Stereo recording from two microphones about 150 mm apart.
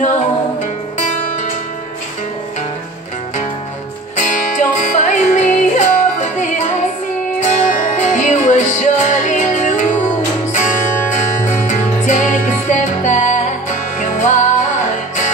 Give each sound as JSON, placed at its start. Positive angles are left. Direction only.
{"t": 4.2, "sound": "music", "side_deg": 55}